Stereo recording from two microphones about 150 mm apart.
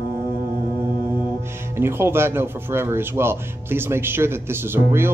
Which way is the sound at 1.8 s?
15° right (ahead or behind).